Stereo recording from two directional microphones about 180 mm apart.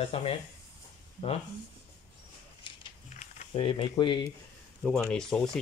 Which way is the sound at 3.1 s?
40° left (ahead or behind).